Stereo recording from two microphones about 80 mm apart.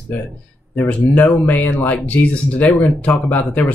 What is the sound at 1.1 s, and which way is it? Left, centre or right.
Speech, left.